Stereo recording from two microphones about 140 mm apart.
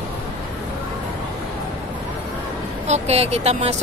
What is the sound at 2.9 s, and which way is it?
Speech, 50° right (ahead or behind).